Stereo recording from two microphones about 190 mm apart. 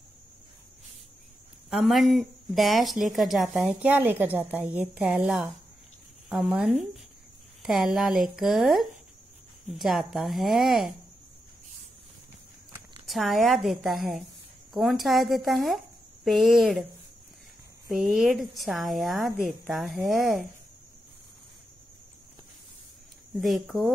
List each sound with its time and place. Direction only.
1.7 s a woman's voice: centre (ahead or behind)
13.0 s a woman's voice: centre (ahead or behind)
17.9 s a woman's voice: centre (ahead or behind)
23.3 s a woman's voice: centre (ahead or behind)